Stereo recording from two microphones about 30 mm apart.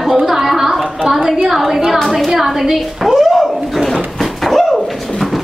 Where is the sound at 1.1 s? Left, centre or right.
Centre.